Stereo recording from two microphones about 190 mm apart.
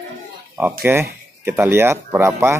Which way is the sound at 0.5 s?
10° right (ahead or behind).